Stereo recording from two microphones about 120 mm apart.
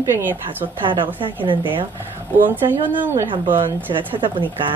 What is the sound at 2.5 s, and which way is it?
Speech, 15° right (ahead or behind).